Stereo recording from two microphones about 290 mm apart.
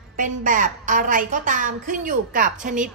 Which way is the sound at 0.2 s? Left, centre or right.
Right.